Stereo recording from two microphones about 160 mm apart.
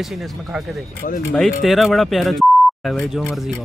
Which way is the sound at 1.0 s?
60° left (ahead or behind).